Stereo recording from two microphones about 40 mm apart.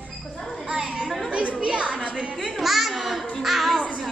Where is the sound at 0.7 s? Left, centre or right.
Right.